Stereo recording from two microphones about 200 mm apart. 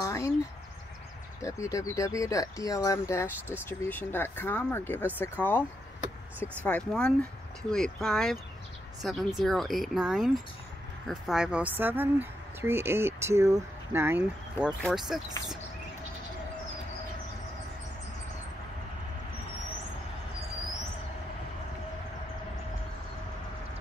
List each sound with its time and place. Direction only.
0.0 s a sound: 15° left (ahead or behind)
1.4 s speech: 15° left (ahead or behind); by 14.7 s 10° right (ahead or behind)
14.8 s speech: centre (ahead or behind)